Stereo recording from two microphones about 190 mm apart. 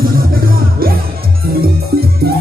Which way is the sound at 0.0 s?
50° right (ahead or behind).